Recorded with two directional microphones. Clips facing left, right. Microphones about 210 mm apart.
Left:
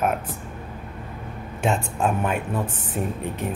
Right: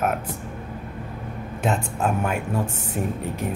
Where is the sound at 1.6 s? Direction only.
5° right (ahead or behind).